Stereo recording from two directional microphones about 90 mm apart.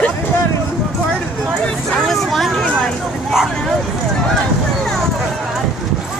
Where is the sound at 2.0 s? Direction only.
Centre (ahead or behind).